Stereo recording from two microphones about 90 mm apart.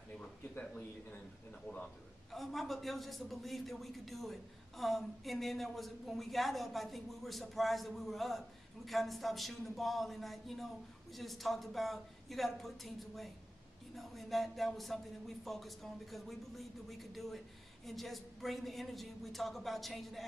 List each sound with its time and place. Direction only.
0.6 s a man's voice: 15° left (ahead or behind)
2.3 s a man's voice: centre (ahead or behind)